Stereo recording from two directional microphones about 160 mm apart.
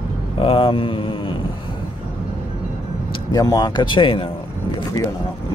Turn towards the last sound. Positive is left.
turn(degrees=35)  # may be behind; listen again after turning